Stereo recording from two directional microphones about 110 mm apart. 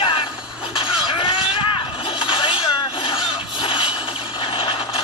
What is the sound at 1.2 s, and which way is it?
Vehicle, 45° left (ahead or behind).